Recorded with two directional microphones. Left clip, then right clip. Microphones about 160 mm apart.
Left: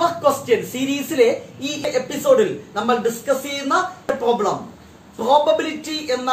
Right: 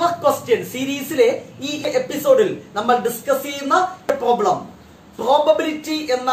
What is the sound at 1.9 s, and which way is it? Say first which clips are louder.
A man's voice: right 1 dB; 10° right (ahead or behind).